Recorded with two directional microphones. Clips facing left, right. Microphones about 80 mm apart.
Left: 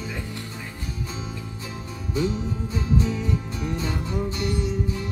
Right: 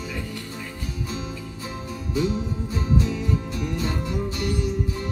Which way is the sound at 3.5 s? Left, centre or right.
Left.